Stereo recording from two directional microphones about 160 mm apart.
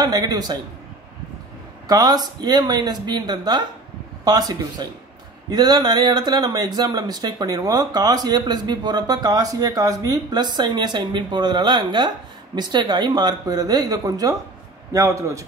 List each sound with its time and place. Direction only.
0.0 s speech: 25° right (ahead or behind)
1.9 s speech: 25° right (ahead or behind)